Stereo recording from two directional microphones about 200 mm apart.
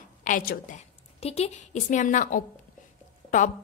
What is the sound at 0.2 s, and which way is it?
A woman's voice, 40° left (ahead or behind).